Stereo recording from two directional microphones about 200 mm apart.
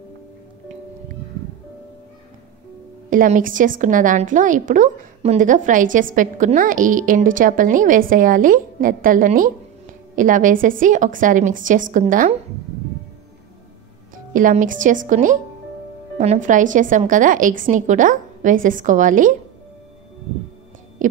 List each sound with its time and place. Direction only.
3.1 s a woman's voice: 40° right (ahead or behind)
14.3 s a woman's voice: 40° right (ahead or behind)
21.0 s music: 40° right (ahead or behind)